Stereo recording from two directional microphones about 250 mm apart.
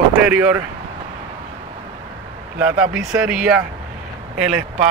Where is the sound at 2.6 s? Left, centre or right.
Centre.